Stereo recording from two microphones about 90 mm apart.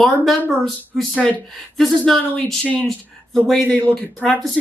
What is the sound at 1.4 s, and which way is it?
Speech, centre (ahead or behind).